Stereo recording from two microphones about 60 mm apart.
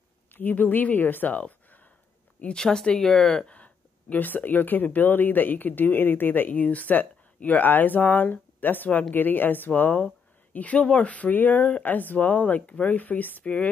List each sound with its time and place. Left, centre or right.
0.3 s speech: left
2.4 s speech: centre
3.4 s speech: left